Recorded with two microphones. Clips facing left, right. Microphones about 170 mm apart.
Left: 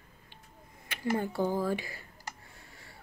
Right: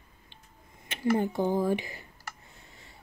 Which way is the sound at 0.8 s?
20° right (ahead or behind).